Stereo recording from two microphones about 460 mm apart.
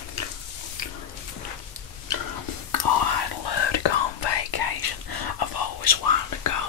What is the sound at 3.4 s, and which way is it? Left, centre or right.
Whispering, left.